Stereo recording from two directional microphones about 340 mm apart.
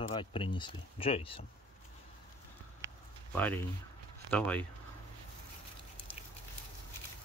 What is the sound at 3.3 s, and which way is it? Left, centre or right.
Speech, centre.